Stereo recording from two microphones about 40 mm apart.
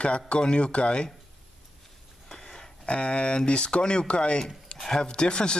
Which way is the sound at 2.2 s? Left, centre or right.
Centre.